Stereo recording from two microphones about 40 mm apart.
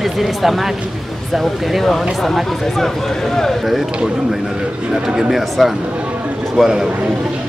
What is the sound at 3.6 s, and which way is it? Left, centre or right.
Speech, centre.